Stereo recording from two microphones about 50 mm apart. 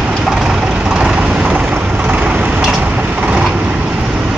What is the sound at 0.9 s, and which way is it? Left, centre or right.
Vehicle, centre.